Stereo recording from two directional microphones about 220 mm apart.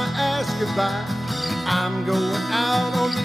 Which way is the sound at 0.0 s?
Centre (ahead or behind).